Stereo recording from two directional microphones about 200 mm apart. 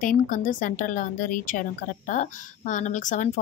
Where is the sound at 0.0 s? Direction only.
40° left (ahead or behind).